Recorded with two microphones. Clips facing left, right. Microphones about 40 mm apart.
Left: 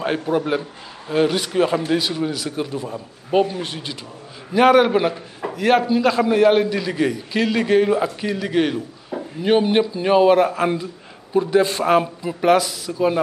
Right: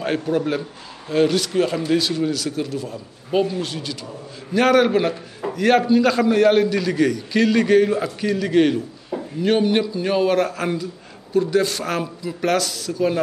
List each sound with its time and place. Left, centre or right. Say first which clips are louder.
0.0 s a man's voice: even; centre
4.6 s a man's voice: left 2 dB; centre